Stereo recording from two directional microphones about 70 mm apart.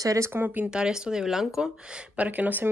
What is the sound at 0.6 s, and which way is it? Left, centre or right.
Speech, centre.